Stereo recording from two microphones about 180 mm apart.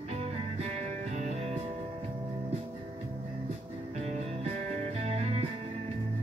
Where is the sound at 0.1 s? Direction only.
35° right (ahead or behind).